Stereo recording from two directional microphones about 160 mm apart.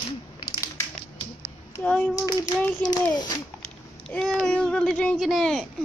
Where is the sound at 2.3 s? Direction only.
25° left (ahead or behind).